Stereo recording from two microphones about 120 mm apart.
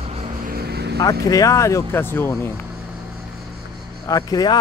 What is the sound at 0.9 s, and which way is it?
Speech, 30° left (ahead or behind).